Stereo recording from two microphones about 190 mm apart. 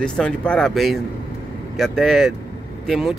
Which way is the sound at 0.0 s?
5° left (ahead or behind).